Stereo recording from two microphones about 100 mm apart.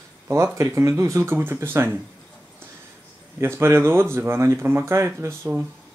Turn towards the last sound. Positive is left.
turn(degrees=-25)  # may be behind; listen again after turning